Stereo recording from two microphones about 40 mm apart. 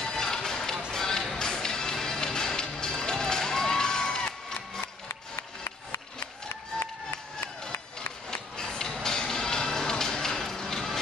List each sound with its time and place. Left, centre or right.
0.0 s music: centre
5.0 s music: left
8.3 s music: centre